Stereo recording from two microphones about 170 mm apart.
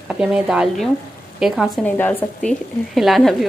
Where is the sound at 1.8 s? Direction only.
10° left (ahead or behind).